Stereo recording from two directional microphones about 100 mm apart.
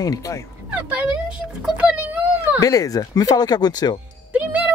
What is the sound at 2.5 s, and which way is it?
Speech, 35° left (ahead or behind).